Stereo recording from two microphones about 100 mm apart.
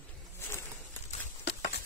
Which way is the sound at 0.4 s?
25° left (ahead or behind).